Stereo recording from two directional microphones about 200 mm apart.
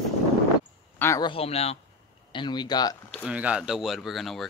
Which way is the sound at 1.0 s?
15° left (ahead or behind).